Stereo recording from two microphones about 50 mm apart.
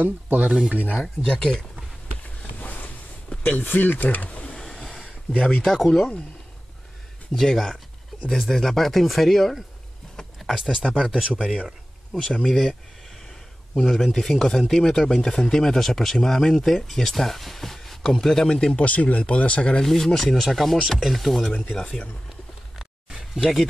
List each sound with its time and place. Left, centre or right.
0.0 s speech: right
2.6 s boat: left
3.4 s speech: left
4.6 s a sound: centre
5.7 s speech: centre
7.3 s speech: centre
10.1 s a sound: centre
10.6 s speech: centre
12.1 s speech: centre
13.7 s speech: centre
18.9 s speech: left
19.8 s speech: centre
23.0 s a sound: centre